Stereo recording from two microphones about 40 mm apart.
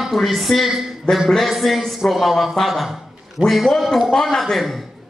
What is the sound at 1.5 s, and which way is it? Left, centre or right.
A man's voice, centre.